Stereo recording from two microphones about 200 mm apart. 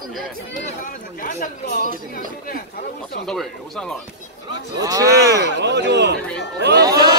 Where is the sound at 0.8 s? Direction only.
40° left (ahead or behind).